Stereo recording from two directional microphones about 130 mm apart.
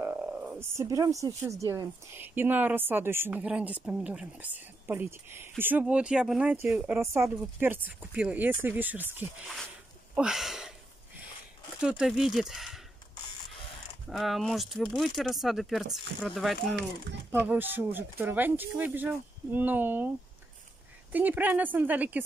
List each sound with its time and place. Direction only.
0.0 s a woman's voice: 15° right (ahead or behind)
7.0 s a woman's voice: 20° right (ahead or behind); by 10.7 s 5° right (ahead or behind)
11.8 s speech: 5° right (ahead or behind)
14.0 s speech: centre (ahead or behind)
17.3 s a woman's voice: 15° right (ahead or behind)
21.1 s a woman's voice: 15° right (ahead or behind)